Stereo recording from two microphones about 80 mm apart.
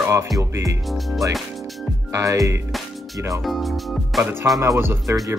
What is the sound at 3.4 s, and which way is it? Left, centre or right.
Speech, centre.